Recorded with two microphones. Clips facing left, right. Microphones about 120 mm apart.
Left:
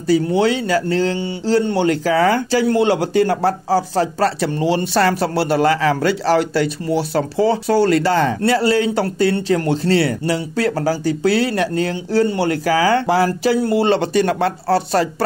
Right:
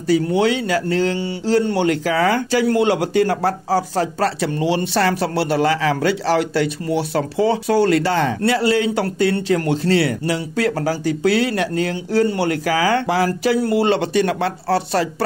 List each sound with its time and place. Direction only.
0.1 s a man's voice: 35° left (ahead or behind)